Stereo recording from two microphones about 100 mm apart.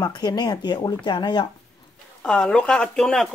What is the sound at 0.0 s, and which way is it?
Speech, 45° left (ahead or behind).